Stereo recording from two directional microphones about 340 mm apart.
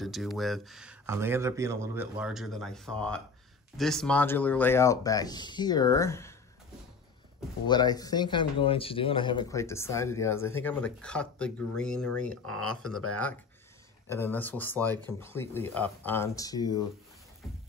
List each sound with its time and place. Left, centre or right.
0.0 s speech: centre
7.6 s speech: centre
12.8 s speech: left
14.0 s speech: centre